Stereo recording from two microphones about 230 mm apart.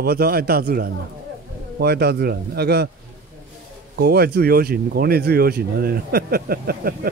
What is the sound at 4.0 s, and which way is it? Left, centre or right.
Speech, right.